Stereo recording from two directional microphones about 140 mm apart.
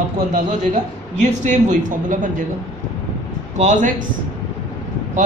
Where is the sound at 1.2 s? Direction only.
60° right (ahead or behind).